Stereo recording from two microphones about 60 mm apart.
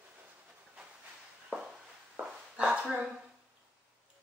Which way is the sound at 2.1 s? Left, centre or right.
Right.